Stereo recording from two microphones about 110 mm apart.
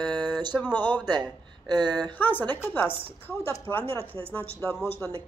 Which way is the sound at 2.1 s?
15° left (ahead or behind).